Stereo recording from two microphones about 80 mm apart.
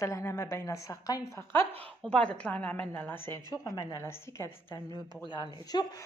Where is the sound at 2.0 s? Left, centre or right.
Centre.